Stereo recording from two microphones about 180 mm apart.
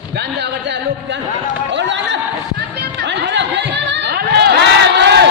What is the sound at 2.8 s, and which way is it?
Music, 70° right (ahead or behind).